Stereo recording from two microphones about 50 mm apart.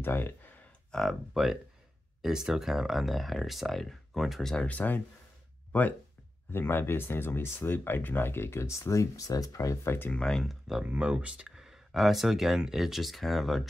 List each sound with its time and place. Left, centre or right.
0.0 s speech: left
0.9 s speech: centre
1.3 s speech: centre
4.6 s speech: left
6.5 s speech: left
10.1 s speech: centre
10.4 s speech: centre
10.8 s speech: right; by 13.7 s centre